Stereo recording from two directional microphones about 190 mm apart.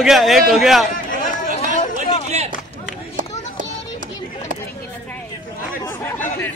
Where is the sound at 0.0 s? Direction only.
Centre (ahead or behind).